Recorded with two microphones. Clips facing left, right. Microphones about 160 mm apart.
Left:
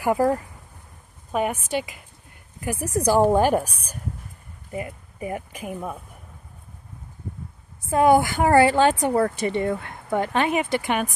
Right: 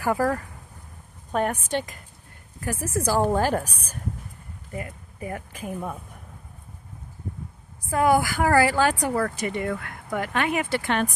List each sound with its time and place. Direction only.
0.0 s a woman's voice: 15° left (ahead or behind)
7.8 s speech: 25° left (ahead or behind)